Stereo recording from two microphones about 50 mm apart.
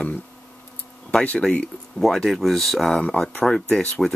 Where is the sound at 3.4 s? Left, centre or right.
Centre.